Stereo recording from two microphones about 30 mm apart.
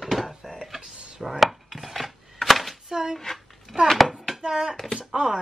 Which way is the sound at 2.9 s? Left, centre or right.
Right.